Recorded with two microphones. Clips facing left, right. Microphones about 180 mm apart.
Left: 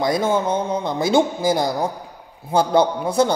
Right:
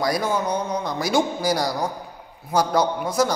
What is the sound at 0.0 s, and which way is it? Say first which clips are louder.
A man's voice: left 4 dB; 25° left (ahead or behind).